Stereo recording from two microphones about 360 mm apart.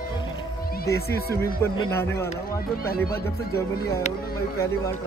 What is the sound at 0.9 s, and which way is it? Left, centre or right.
Speech, left.